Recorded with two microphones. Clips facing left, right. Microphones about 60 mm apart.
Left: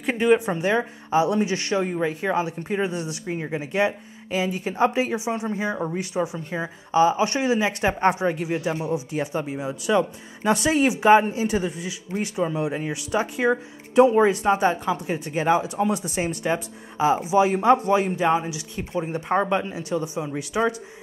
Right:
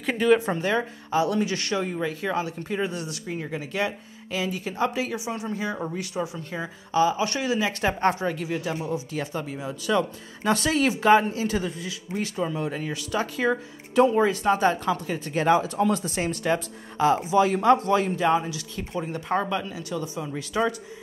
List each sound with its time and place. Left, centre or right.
0.0 s speech: left